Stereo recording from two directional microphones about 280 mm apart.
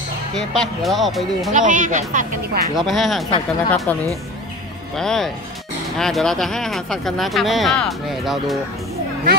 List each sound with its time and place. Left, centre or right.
0.5 s speech: centre
1.5 s speech: right
2.8 s speech: centre
3.3 s speech: centre
4.9 s speech: centre